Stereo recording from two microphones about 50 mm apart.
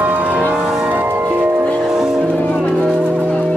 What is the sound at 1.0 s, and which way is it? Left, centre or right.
Music, right.